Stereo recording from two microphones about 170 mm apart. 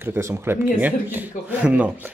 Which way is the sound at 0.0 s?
15° right (ahead or behind).